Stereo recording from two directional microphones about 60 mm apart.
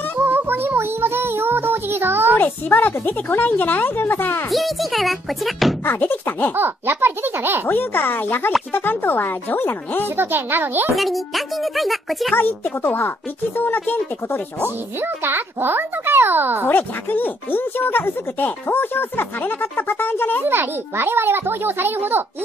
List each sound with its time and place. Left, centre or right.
0.2 s music: right
2.3 s speech: left
4.5 s a child's voice: centre
5.9 s speech: left
6.5 s a child's voice: right
7.6 s speech: left
10.0 s a child's voice: right
11.0 s a child's voice: centre
12.4 s speech: left
15.0 s a child's voice: right
16.6 s speech: left
20.4 s a child's voice: right